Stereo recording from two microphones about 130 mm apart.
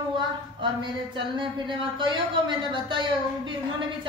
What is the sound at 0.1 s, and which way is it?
Speech, 40° right (ahead or behind).